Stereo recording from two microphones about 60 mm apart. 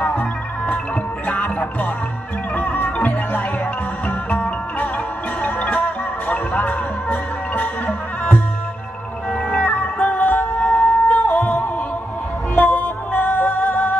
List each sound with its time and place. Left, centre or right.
0.0 s music: left